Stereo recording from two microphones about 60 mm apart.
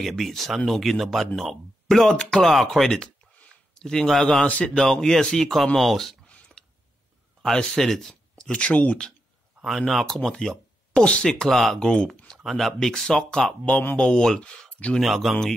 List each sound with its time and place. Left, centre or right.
0.0 s speech: centre
4.5 s speech: left
4.7 s speech: centre
7.4 s speech: centre
9.7 s speech: centre
11.4 s speech: centre
11.8 s speech: centre
12.4 s speech: centre
13.5 s speech: left
13.9 s speech: centre
15.0 s speech: centre